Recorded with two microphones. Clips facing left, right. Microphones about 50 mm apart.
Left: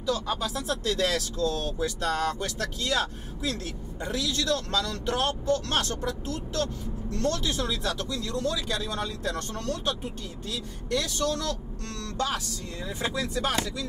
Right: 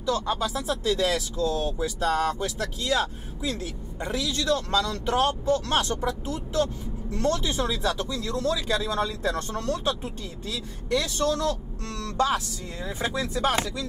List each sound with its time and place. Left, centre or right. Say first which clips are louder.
0.4 s speech: right 2 dB; centre
8.9 s speech: right 4 dB; centre
10.9 s speech: right 3 dB; centre
11.1 s speech: right 4 dB; centre
13.0 s speech: right 3 dB; right